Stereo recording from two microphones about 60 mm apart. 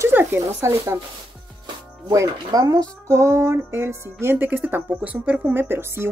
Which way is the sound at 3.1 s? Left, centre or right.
Right.